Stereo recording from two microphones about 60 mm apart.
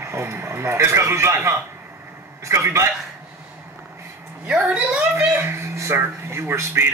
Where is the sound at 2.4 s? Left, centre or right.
Right.